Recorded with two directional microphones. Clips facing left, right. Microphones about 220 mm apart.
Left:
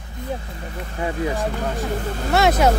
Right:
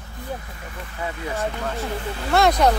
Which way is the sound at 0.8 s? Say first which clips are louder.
Left 6 dB; 35° left (ahead or behind).